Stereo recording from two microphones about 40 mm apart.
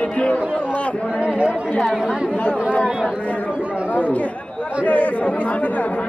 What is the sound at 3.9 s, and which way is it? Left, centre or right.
Speech, left.